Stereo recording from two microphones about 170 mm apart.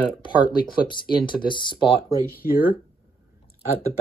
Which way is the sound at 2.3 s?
60° left (ahead or behind).